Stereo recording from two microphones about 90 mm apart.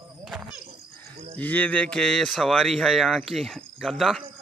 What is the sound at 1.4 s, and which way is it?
Speech, 15° left (ahead or behind).